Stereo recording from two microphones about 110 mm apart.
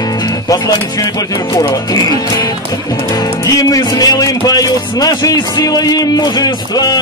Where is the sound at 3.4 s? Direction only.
35° left (ahead or behind).